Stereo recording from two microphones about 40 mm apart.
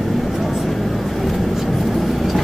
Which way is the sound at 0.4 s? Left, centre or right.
Centre.